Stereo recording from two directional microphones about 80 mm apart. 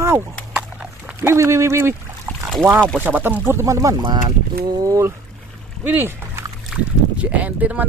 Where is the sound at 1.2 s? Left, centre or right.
Right.